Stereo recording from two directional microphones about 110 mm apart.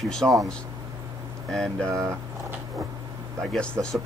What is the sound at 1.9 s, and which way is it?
Speech, 25° right (ahead or behind).